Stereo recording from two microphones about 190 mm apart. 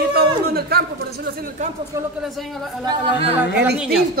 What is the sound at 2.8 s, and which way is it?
Speech, 25° right (ahead or behind).